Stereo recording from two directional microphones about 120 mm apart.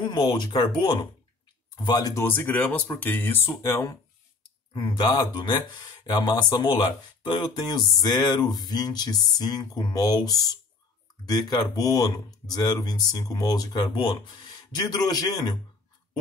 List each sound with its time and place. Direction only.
0.0 s speech: 40° left (ahead or behind)
1.8 s speech: 35° left (ahead or behind)
2.2 s speech: 15° left (ahead or behind)
4.7 s speech: 40° left (ahead or behind)